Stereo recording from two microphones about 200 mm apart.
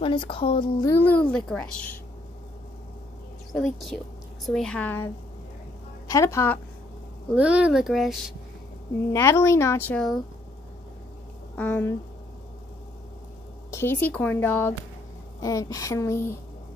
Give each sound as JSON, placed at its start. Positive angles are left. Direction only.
{"t": 0.0, "sound": "speech", "side_deg": 25}
{"t": 1.0, "sound": "a woman's voice", "side_deg": 5}
{"t": 3.5, "sound": "a woman's voice", "side_deg": 0}
{"t": 7.3, "sound": "speech", "side_deg": -5}
{"t": 9.1, "sound": "a woman's voice", "side_deg": 15}
{"t": 11.5, "sound": "speech", "side_deg": 5}
{"t": 13.7, "sound": "a woman's voice", "side_deg": 10}